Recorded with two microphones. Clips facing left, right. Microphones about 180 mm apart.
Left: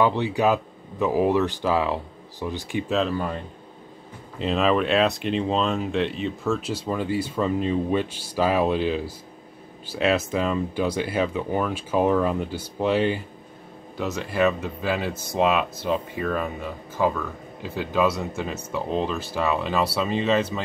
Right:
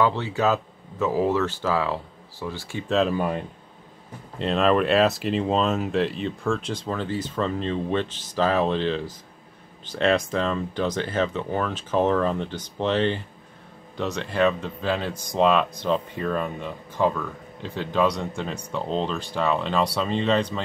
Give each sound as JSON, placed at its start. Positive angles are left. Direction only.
{"t": 0.0, "sound": "speech", "side_deg": 15}
{"t": 3.1, "sound": "speech", "side_deg": -15}
{"t": 4.4, "sound": "speech", "side_deg": 0}